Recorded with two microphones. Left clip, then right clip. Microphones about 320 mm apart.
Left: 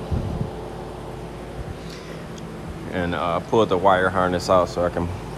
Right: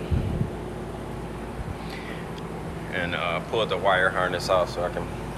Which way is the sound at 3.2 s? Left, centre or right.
Centre.